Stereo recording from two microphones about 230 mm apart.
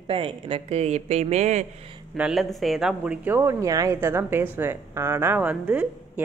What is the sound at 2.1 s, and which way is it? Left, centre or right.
Speech, centre.